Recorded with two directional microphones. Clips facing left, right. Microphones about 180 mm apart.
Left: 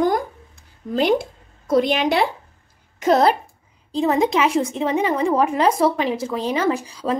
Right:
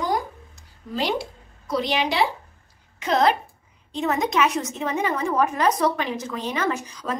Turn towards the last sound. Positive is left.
turn(degrees=30)  # may be behind; listen again after turning